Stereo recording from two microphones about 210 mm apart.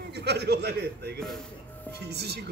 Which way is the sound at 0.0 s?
50° right (ahead or behind).